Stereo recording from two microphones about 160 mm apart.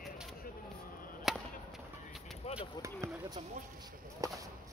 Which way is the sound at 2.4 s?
40° left (ahead or behind).